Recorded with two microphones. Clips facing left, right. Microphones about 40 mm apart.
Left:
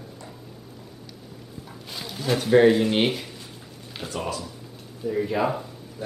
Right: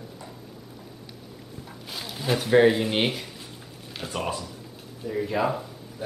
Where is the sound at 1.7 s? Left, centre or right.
Centre.